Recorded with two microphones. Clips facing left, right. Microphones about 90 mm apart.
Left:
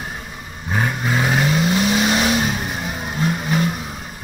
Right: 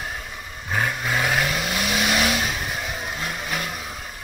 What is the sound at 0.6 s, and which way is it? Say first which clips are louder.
Vehicle: left 3 dB; 15° left (ahead or behind).